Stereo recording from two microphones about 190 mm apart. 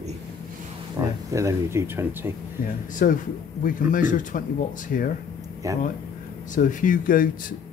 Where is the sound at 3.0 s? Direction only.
45° left (ahead or behind).